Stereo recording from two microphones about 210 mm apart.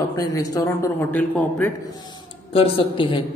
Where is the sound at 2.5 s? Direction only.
25° left (ahead or behind).